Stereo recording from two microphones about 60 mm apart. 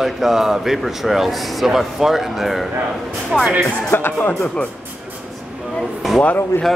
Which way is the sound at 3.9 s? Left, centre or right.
Left.